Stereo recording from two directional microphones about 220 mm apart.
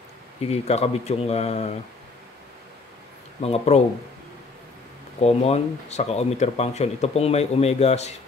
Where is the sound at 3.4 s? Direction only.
25° left (ahead or behind).